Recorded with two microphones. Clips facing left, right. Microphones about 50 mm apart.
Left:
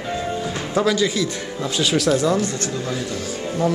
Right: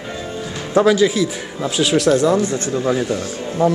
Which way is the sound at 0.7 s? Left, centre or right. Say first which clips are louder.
Right 6 dB; centre.